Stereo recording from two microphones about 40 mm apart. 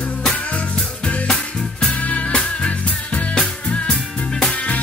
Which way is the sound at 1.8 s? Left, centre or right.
Left.